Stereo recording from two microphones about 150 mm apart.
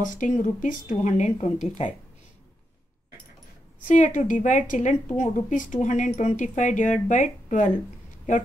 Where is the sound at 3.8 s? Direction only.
55° left (ahead or behind).